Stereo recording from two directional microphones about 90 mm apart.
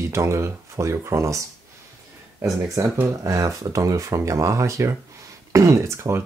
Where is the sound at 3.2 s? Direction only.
40° right (ahead or behind).